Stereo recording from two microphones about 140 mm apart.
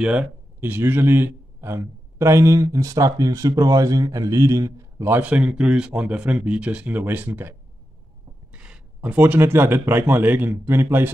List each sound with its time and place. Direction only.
0.0 s speech: 10° right (ahead or behind)
8.5 s speech: 5° right (ahead or behind)